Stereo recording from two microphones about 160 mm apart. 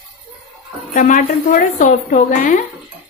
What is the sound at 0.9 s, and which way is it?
A woman's voice, 55° left (ahead or behind).